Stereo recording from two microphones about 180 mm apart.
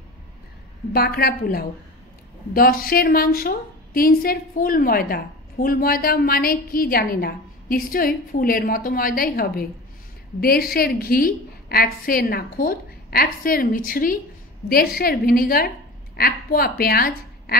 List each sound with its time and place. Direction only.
0.9 s a woman's voice: 60° left (ahead or behind)